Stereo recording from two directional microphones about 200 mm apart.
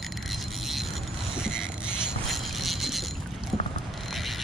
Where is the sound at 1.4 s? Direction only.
5° right (ahead or behind).